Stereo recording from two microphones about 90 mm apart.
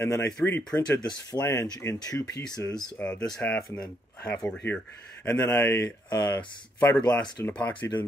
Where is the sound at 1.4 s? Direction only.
30° left (ahead or behind).